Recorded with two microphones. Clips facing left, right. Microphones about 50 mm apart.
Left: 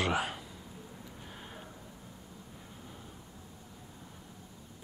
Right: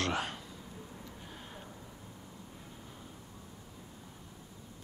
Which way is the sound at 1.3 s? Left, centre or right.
Centre.